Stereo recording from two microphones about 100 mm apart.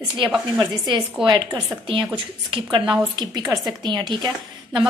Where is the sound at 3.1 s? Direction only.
45° right (ahead or behind).